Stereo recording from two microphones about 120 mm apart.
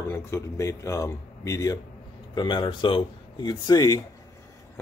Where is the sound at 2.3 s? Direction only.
40° left (ahead or behind).